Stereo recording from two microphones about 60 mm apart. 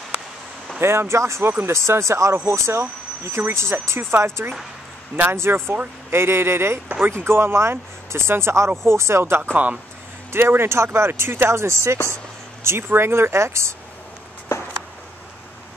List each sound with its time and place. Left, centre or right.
0.7 s speech: right
9.5 s speech: right
10.3 s speech: right
12.6 s speech: right